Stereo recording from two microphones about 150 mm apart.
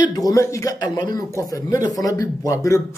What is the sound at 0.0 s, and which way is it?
A man's voice, 25° left (ahead or behind).